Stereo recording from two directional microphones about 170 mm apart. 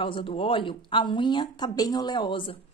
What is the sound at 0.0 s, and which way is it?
A woman's voice, 30° left (ahead or behind).